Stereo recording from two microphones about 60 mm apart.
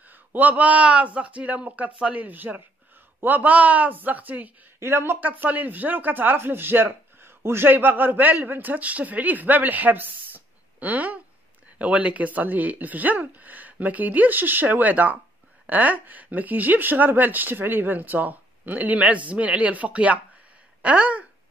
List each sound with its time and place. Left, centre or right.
0.3 s speech: right
4.7 s speech: right
5.2 s speech: right